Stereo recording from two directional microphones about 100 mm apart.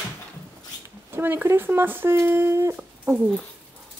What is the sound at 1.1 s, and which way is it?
Speech, 20° right (ahead or behind).